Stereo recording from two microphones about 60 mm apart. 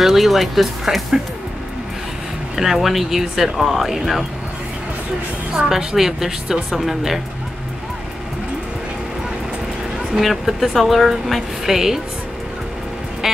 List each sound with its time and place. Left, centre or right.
0.0 s speech: centre
2.5 s speech: centre
5.5 s a woman's voice: centre
10.1 s speech: centre